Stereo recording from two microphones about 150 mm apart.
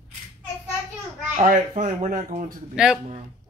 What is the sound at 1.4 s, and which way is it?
Speech, 55° right (ahead or behind).